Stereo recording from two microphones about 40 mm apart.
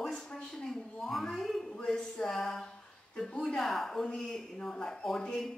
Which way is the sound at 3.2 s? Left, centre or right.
Centre.